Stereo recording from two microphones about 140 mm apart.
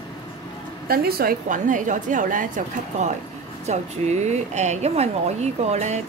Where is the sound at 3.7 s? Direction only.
55° right (ahead or behind).